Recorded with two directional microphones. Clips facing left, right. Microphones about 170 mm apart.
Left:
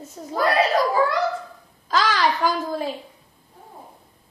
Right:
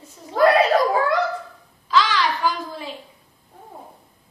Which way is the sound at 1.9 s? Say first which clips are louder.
Even; 45° left (ahead or behind).